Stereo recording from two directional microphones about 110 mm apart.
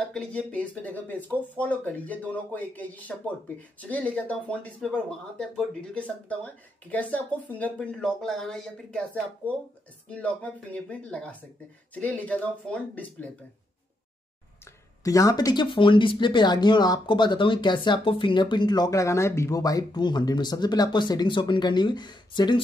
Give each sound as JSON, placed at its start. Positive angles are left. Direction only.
{"t": 0.1, "sound": "speech", "side_deg": 10}
{"t": 9.4, "sound": "speech", "side_deg": -15}
{"t": 10.0, "sound": "speech", "side_deg": 10}
{"t": 15.0, "sound": "speech", "side_deg": 30}